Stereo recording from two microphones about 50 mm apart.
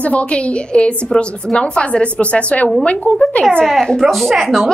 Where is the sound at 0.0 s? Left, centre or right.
Left.